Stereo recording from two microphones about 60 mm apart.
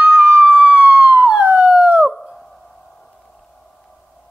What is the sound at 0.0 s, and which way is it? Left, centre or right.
Police car, right.